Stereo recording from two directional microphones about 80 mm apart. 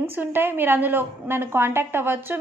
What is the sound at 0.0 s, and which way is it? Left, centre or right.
A woman's voice, right.